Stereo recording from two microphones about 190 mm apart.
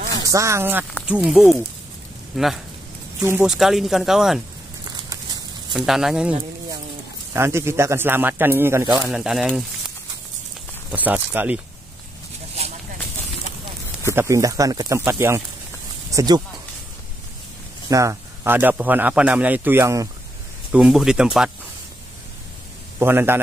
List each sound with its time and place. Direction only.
0.1 s speech: 15° right (ahead or behind); by 2.6 s centre (ahead or behind)
3.2 s speech: 15° right (ahead or behind)
3.4 s speech: centre (ahead or behind)
4.8 s a sound: 20° right (ahead or behind)
5.7 s speech: centre (ahead or behind)
7.3 s speech: 15° right (ahead or behind)
9.1 s speech: 5° right (ahead or behind)
14.1 s speech: 15° right (ahead or behind)
17.8 s speech: 15° right (ahead or behind)
20.7 s speech: 5° right (ahead or behind)
22.9 s speech: 10° right (ahead or behind)